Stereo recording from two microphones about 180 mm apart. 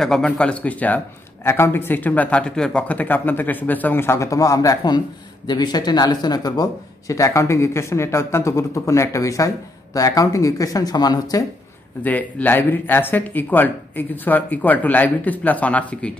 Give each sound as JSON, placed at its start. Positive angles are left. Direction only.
{"t": 0.0, "sound": "speech", "side_deg": 5}
{"t": 12.0, "sound": "speech", "side_deg": 10}